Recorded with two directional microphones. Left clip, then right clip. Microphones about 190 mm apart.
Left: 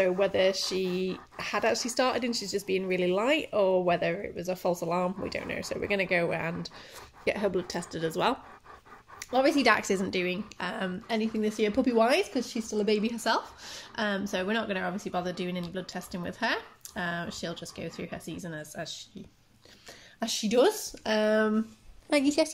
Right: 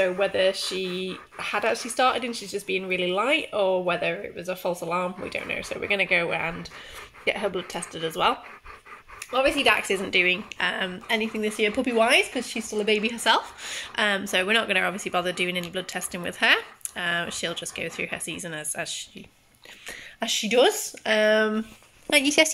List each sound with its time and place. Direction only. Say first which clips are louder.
0.0 s speech: right 3 dB; 10° left (ahead or behind)
9.3 s speech: right 3 dB; 40° left (ahead or behind)
10.1 s speech: right 9 dB; 5° left (ahead or behind)
13.1 s speech: right 6 dB; centre (ahead or behind)
19.9 s speech: right 6 dB; centre (ahead or behind)